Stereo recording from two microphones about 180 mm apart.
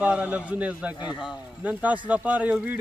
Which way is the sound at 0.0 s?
5° right (ahead or behind).